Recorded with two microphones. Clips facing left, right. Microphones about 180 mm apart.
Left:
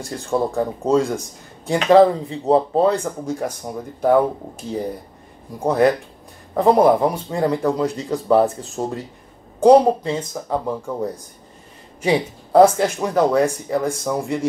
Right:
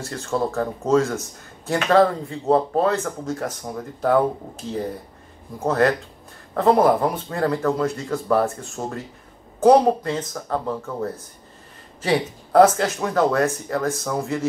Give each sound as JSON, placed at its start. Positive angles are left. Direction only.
{"t": 0.0, "sound": "speech", "side_deg": 15}
{"t": 5.6, "sound": "speech", "side_deg": 15}
{"t": 9.6, "sound": "speech", "side_deg": 10}